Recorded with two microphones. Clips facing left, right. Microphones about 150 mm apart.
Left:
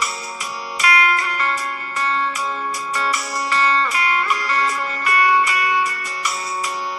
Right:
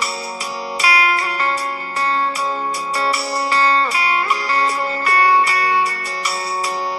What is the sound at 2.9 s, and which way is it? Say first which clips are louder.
Music: right 4 dB; 35° right (ahead or behind).